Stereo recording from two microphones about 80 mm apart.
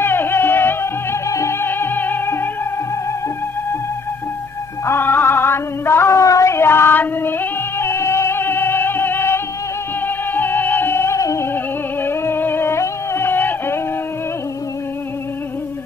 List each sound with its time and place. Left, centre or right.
0.0 s music: left
4.8 s music: left
12.0 s music: left